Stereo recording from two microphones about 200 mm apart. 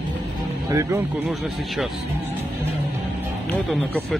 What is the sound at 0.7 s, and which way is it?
Speech, 15° right (ahead or behind).